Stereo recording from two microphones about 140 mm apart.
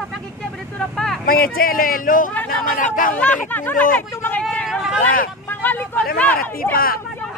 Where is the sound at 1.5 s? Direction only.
90° left.